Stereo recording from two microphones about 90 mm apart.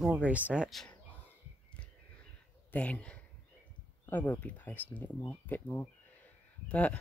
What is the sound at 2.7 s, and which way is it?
Speech, 15° left (ahead or behind).